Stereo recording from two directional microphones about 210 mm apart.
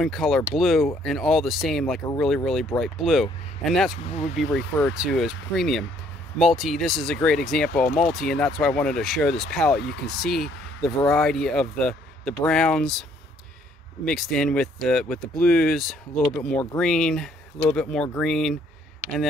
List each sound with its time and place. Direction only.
0.0 s speech: centre (ahead or behind)
4.0 s speech: 30° left (ahead or behind)
4.7 s speech: centre (ahead or behind)
9.8 s speech: 50° left (ahead or behind)
10.2 s speech: centre (ahead or behind)
14.0 s speech: centre (ahead or behind)